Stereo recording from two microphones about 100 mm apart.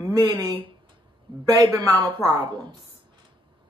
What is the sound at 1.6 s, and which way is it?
Speech, 45° right (ahead or behind).